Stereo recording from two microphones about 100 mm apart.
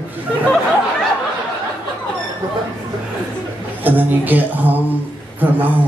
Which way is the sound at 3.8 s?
20° right (ahead or behind).